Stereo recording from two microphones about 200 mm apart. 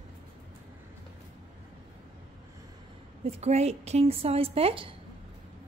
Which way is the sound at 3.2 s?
30° right (ahead or behind).